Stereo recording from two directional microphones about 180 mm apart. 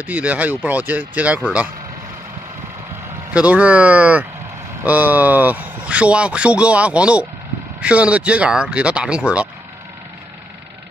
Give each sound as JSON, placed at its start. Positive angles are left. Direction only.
{"t": 0.0, "sound": "speech", "side_deg": -10}
{"t": 3.3, "sound": "speech", "side_deg": -5}